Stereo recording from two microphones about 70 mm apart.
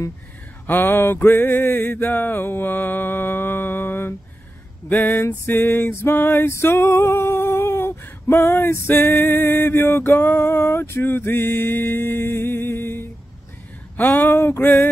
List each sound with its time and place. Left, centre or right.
0.7 s mantra: left
4.8 s a sound: left
5.2 s music: left
5.5 s mantra: left
6.5 s a sound: left
13.9 s speech: left